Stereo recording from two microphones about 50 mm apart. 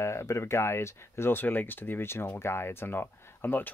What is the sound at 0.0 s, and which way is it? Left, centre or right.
Speech, left.